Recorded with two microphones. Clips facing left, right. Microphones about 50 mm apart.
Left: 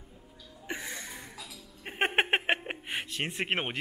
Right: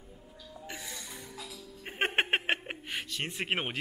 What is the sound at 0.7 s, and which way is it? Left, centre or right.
Music, left.